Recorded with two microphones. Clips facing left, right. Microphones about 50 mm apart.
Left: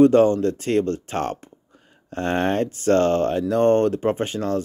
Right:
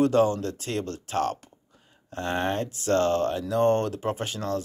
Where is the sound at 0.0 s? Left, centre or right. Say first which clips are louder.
Left 7 dB; left.